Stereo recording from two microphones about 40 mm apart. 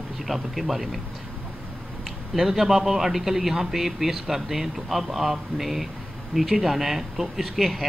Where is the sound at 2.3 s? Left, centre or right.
Centre.